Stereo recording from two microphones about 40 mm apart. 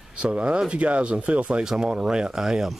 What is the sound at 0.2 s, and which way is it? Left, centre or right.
Speech, right.